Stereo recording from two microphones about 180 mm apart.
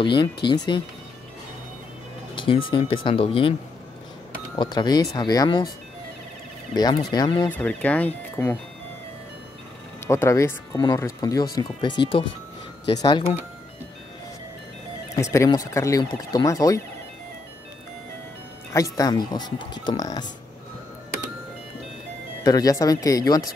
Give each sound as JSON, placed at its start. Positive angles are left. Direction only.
{"t": 0.0, "sound": "speech", "side_deg": 25}
{"t": 2.3, "sound": "music", "side_deg": 30}
{"t": 2.7, "sound": "speech", "side_deg": 30}
{"t": 4.6, "sound": "speech", "side_deg": 25}
{"t": 6.7, "sound": "speech", "side_deg": 20}
{"t": 7.4, "sound": "speech", "side_deg": 10}
{"t": 10.0, "sound": "speech", "side_deg": 15}
{"t": 15.3, "sound": "speech", "side_deg": 20}
{"t": 18.7, "sound": "speech", "side_deg": 20}
{"t": 22.4, "sound": "speech", "side_deg": 20}